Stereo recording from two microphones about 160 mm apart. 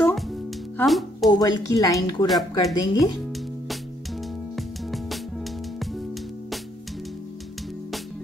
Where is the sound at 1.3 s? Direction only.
25° left (ahead or behind).